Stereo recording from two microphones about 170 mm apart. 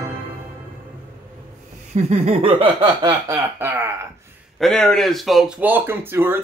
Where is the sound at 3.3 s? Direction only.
15° right (ahead or behind).